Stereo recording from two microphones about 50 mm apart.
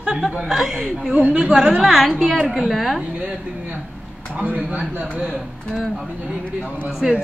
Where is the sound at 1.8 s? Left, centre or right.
Centre.